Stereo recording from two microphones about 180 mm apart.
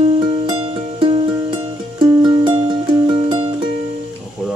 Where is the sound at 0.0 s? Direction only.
30° right (ahead or behind).